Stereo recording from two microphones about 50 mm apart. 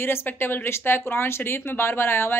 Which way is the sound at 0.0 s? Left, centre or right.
Left.